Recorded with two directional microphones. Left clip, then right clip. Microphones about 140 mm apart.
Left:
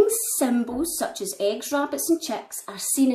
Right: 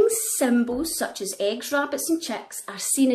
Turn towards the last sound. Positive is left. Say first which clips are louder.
# right 1 dB
turn(degrees=-5)  # may be behind; listen again after turning